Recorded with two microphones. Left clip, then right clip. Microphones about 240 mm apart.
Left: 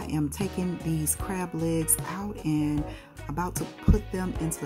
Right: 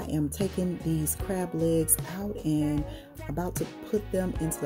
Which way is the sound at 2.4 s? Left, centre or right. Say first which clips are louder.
Even; left.